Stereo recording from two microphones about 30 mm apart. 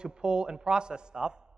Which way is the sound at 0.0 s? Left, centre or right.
Right.